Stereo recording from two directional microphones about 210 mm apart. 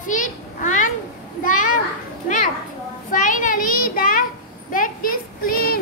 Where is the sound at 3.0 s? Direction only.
40° left (ahead or behind).